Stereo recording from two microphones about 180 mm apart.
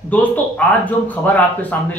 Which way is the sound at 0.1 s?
10° left (ahead or behind).